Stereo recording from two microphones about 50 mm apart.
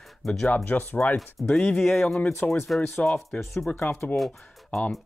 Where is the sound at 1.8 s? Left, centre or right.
Centre.